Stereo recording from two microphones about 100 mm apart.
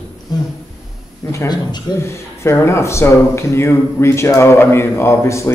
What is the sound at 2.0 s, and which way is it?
Speech, 25° left (ahead or behind).